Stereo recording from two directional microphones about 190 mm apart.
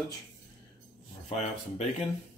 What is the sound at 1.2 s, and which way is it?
Speech, 35° left (ahead or behind).